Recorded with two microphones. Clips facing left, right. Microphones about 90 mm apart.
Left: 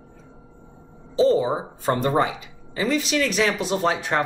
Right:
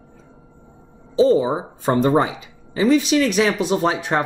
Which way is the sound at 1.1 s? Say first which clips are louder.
Right 3 dB; 15° right (ahead or behind).